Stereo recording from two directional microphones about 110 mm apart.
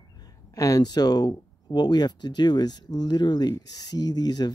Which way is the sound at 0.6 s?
35° left (ahead or behind).